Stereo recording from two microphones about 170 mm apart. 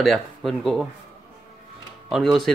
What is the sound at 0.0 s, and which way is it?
Speech, centre (ahead or behind).